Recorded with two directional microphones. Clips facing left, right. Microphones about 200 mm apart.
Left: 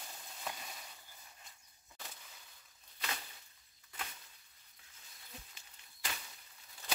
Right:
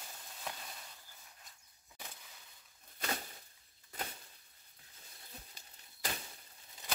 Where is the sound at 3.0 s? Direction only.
45° right (ahead or behind).